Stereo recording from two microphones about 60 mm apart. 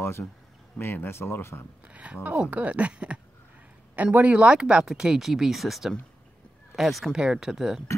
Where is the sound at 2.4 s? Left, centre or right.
Right.